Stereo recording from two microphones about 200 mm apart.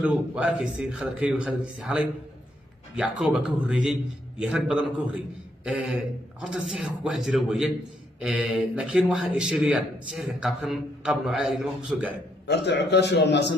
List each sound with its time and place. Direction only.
0.0 s a man's voice: 5° right (ahead or behind)
3.0 s a man's voice: 5° right (ahead or behind)
12.4 s a man's voice: 60° left (ahead or behind)